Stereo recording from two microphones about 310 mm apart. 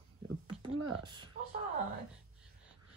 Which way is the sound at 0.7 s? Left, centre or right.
Right.